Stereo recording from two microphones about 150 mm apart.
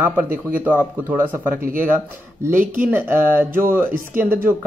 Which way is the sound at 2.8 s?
10° right (ahead or behind).